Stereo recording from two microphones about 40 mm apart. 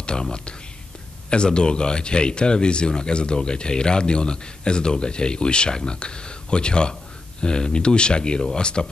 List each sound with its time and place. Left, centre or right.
0.0 s a man's voice: left